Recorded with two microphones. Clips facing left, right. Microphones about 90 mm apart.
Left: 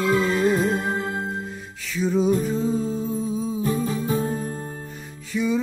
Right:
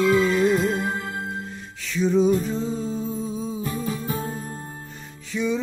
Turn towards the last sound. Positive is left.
turn(degrees=5)  # may be behind; listen again after turning